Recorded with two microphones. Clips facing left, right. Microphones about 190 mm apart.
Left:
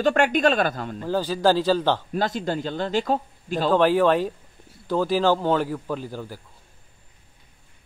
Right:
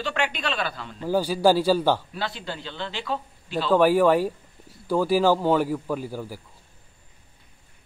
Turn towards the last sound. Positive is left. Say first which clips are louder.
# right 1 dB
turn(degrees=-10)  # may be behind; listen again after turning